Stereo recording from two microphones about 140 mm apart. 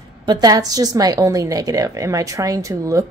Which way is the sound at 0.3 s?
25° right (ahead or behind).